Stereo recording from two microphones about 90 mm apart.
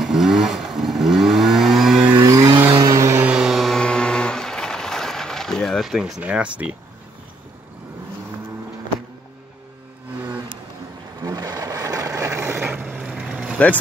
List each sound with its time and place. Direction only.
0.0 s vehicle: 5° right (ahead or behind)
2.1 s vehicle: 45° right (ahead or behind)
2.8 s vehicle: 40° right (ahead or behind)
3.3 s vehicle: 5° right (ahead or behind)
6.2 s speech: 15° right (ahead or behind)
11.1 s a sound: 40° right (ahead or behind); by 13.0 s 20° right (ahead or behind)
13.0 s vehicle: 5° right (ahead or behind)